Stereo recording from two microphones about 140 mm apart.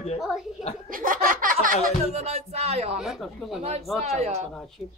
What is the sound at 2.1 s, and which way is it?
Speech, 50° right (ahead or behind).